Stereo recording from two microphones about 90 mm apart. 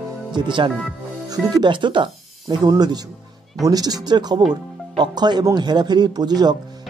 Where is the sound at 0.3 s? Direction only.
60° right (ahead or behind).